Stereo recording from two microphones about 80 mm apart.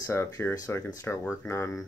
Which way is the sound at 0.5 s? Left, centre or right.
Left.